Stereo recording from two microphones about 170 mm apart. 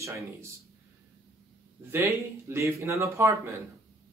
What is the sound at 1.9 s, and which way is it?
Speech, 15° right (ahead or behind).